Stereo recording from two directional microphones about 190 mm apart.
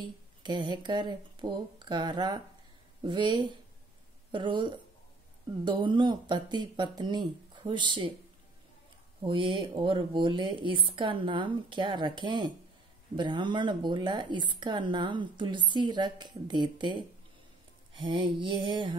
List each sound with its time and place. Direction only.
0.0 s speech: 25° right (ahead or behind)
9.2 s speech: 25° right (ahead or behind)